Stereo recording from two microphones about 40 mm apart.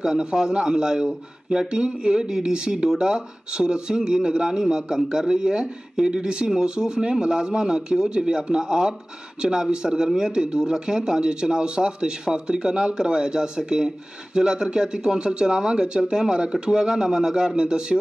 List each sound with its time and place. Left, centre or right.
0.0 s a man's voice: centre